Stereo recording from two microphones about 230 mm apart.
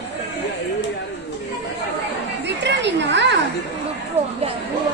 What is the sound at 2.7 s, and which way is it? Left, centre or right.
Speech, right.